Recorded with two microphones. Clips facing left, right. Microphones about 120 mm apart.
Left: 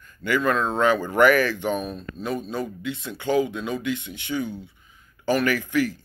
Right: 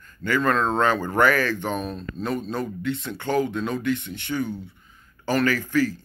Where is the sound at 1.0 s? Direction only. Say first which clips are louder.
Left 2 dB; 35° right (ahead or behind).